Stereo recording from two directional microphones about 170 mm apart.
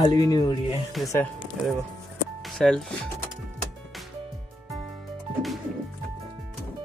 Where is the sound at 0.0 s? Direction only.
20° left (ahead or behind).